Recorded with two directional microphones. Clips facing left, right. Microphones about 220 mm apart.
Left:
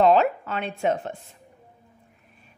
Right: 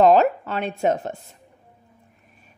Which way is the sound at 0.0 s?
40° right (ahead or behind).